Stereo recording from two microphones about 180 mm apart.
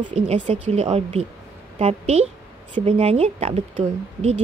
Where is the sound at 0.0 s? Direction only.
35° right (ahead or behind).